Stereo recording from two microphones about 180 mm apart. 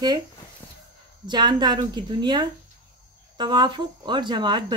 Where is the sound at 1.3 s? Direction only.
25° right (ahead or behind).